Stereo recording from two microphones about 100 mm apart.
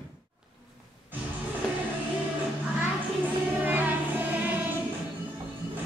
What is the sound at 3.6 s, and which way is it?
Choir, 15° right (ahead or behind).